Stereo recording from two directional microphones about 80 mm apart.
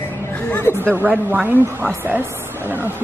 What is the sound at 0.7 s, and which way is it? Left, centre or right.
A woman's voice, right.